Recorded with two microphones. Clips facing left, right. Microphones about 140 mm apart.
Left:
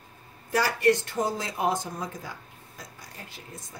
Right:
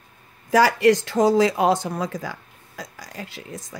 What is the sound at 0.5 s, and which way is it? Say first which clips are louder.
Speech: right 7 dB; 90° right.